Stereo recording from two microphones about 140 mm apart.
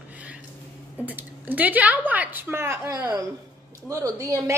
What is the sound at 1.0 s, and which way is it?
Speech, 10° right (ahead or behind).